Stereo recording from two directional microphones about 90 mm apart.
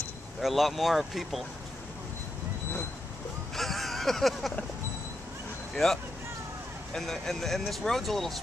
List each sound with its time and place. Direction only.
0.4 s speech: centre (ahead or behind)
3.5 s a sound: centre (ahead or behind)
6.9 s speech: 5° left (ahead or behind)